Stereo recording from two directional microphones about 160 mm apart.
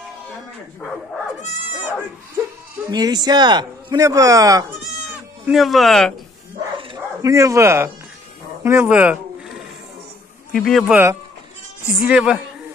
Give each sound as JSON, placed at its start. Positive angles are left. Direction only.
{"t": 2.9, "sound": "speech", "side_deg": -25}
{"t": 5.5, "sound": "speech", "side_deg": 0}
{"t": 7.2, "sound": "speech", "side_deg": -20}
{"t": 8.6, "sound": "a sound", "side_deg": -15}
{"t": 10.5, "sound": "speech", "side_deg": 0}
{"t": 12.0, "sound": "speech", "side_deg": -5}